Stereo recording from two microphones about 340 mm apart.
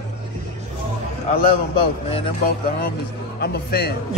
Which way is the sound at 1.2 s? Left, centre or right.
Centre.